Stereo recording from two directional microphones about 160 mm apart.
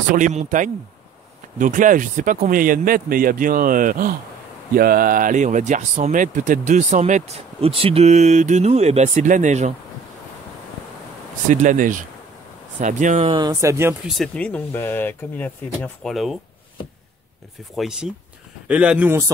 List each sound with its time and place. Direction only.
0.1 s speech: 50° right (ahead or behind)
11.4 s speech: 50° right (ahead or behind)
13.3 s speech: 25° right (ahead or behind)
14.0 s speech: centre (ahead or behind)
17.7 s speech: 5° right (ahead or behind)